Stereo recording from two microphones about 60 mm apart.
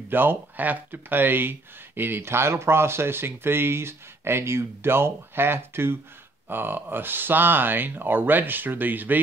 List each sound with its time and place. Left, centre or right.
0.1 s speech: right